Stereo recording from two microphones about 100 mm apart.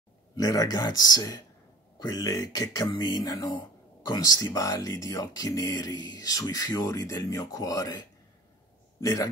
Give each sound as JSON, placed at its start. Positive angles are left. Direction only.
{"t": 0.4, "sound": "music", "side_deg": 35}
{"t": 2.9, "sound": "speech", "side_deg": 40}
{"t": 4.6, "sound": "music", "side_deg": 35}
{"t": 9.0, "sound": "music", "side_deg": 35}